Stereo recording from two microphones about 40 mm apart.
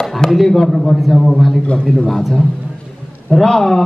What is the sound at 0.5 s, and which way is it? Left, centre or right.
A man's voice, centre.